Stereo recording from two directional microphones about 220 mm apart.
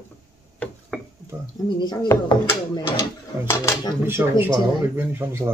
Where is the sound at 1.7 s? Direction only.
20° left (ahead or behind).